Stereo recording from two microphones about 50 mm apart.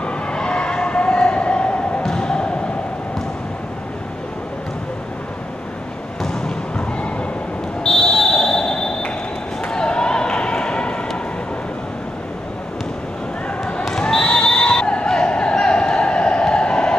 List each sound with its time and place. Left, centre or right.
0.0 s siren: centre
2.0 s basketball bounce: centre
7.8 s fire alarm: centre
9.7 s basketball bounce: centre
13.8 s basketball bounce: centre